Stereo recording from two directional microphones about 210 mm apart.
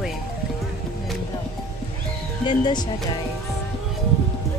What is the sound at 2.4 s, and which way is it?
Speech, 20° left (ahead or behind).